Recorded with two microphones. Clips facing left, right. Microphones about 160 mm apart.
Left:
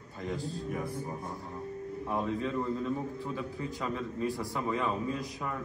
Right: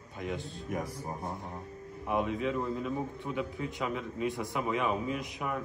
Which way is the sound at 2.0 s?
15° right (ahead or behind).